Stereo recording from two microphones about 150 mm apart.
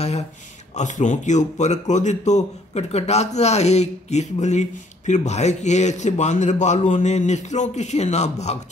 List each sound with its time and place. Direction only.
0.7 s speech: 55° left (ahead or behind)